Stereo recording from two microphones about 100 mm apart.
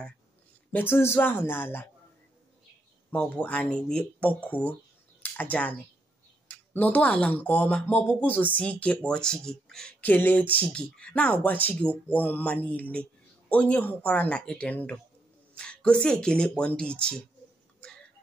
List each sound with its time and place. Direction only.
0.7 s speech: 20° left (ahead or behind)
3.1 s speech: 10° left (ahead or behind)
9.9 s speech: 20° left (ahead or behind)